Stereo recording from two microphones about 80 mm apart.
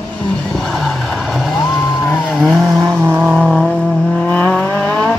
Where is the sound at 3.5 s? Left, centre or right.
Centre.